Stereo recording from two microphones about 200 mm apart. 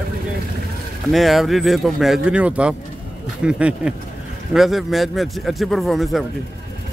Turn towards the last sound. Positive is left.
turn(degrees=0)  # may be behind; listen again after turning